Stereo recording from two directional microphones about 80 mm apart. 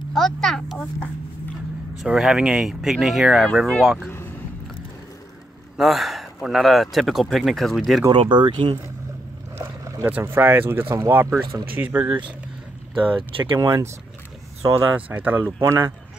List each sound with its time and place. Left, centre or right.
0.1 s speech: centre
2.0 s speech: centre
5.8 s speech: centre
8.1 s speech: right
9.6 s boat: right
10.0 s speech: right
13.3 s speech: right
13.6 s speech: right
14.8 s speech: right